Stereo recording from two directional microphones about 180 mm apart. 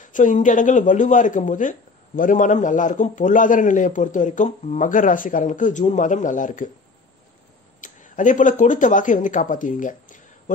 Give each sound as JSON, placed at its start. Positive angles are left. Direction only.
{"t": 0.0, "sound": "speech", "side_deg": 45}
{"t": 7.8, "sound": "speech", "side_deg": 45}